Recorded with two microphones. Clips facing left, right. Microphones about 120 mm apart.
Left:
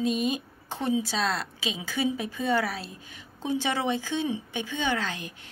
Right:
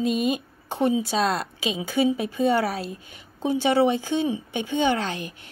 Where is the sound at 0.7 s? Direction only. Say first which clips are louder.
Right 5 dB; 15° right (ahead or behind).